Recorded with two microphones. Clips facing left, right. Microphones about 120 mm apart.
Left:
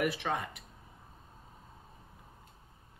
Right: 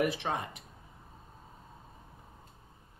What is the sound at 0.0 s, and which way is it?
Speech, 25° right (ahead or behind).